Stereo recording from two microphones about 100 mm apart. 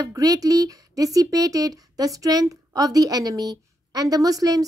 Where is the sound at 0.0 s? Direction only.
35° right (ahead or behind).